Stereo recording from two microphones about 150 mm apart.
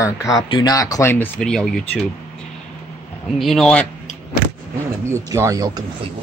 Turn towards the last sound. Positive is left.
turn(degrees=-25)  # may be behind; listen again after turning